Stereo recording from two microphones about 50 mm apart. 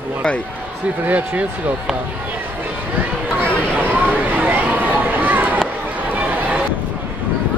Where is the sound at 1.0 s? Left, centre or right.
Right.